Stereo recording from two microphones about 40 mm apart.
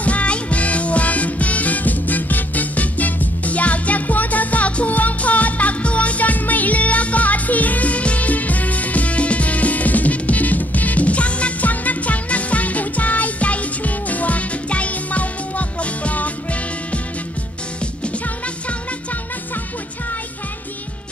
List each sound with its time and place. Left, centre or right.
0.0 s music: left